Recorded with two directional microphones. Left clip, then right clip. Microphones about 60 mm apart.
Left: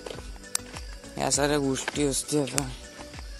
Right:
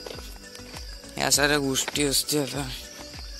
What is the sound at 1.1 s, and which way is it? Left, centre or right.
Speech, left.